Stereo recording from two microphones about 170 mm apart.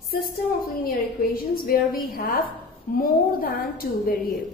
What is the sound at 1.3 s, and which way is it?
A woman's voice, 60° left (ahead or behind).